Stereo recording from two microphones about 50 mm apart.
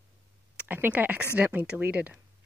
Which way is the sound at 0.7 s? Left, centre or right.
Right.